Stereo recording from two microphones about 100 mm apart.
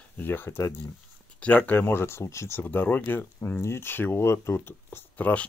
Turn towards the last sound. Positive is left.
turn(degrees=15)  # may be behind; listen again after turning